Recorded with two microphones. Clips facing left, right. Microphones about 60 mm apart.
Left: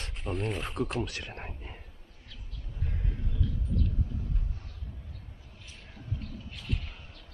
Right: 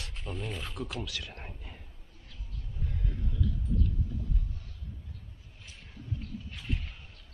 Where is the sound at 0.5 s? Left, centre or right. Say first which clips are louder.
Left 5 dB; left.